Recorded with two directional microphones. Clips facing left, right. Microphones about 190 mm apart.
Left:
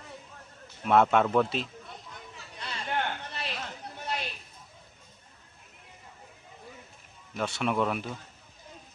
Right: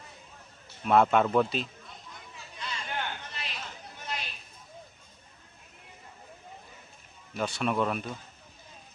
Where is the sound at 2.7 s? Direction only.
55° left (ahead or behind).